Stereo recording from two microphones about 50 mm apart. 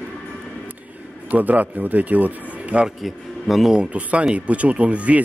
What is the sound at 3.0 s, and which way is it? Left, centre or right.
Speech, centre.